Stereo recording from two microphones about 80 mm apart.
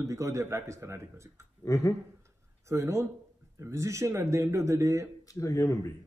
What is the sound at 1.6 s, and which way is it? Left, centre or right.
Speech, left.